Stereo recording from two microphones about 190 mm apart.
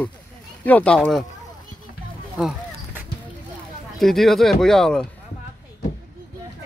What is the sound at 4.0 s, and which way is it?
Speech, centre (ahead or behind).